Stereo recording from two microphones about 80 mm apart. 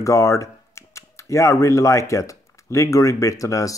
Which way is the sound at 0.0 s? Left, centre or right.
Left.